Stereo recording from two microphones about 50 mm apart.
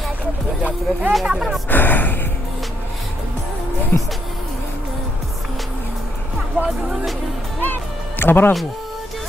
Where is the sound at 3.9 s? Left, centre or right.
Left.